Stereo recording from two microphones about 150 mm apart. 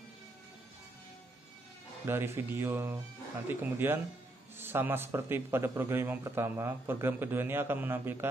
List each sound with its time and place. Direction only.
2.0 s a man's voice: 15° right (ahead or behind)